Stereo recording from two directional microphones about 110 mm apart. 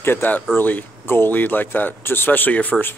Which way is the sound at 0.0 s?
20° left (ahead or behind).